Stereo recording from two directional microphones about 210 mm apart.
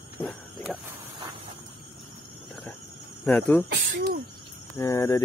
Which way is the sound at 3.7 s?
45° right (ahead or behind).